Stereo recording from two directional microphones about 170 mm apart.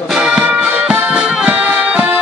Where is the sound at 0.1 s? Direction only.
5° right (ahead or behind).